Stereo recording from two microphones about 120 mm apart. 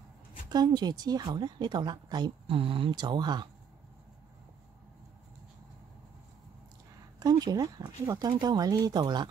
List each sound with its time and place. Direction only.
0.5 s speech: 35° right (ahead or behind)
7.2 s speech: 30° right (ahead or behind)